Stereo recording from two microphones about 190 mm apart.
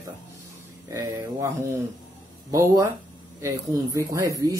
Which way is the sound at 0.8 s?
15° right (ahead or behind).